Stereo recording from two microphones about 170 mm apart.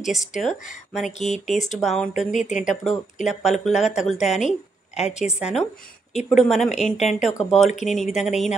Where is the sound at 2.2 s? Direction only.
45° left (ahead or behind).